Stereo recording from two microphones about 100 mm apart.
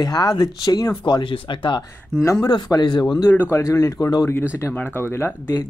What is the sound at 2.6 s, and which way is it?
Speech, 45° left (ahead or behind).